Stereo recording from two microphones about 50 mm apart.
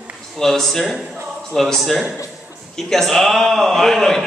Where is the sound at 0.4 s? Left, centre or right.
Centre.